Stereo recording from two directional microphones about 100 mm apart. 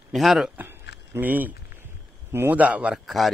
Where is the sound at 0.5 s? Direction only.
20° right (ahead or behind).